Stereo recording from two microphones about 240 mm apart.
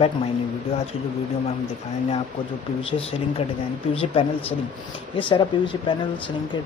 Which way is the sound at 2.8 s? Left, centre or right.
Left.